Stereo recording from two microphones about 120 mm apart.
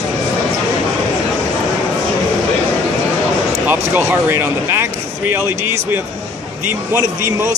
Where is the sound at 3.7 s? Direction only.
15° right (ahead or behind).